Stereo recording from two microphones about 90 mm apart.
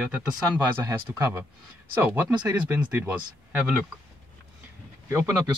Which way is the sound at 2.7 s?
20° right (ahead or behind).